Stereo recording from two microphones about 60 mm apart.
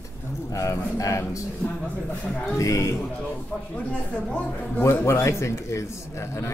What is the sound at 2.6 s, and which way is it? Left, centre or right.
Speech, left.